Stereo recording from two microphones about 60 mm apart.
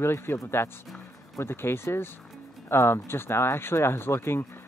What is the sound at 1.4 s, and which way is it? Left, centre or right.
Speech, left.